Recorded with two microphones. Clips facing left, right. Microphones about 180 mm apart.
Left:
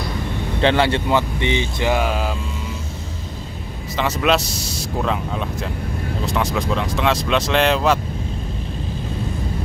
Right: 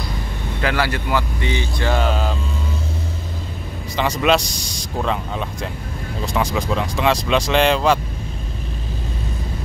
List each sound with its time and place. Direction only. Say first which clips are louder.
0.6 s speech: left 4 dB; 25° left (ahead or behind); by 2.3 s 10° left (ahead or behind)
3.9 s speech: right 1 dB; centre (ahead or behind)